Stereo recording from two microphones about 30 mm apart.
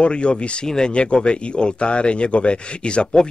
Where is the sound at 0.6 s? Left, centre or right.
Left.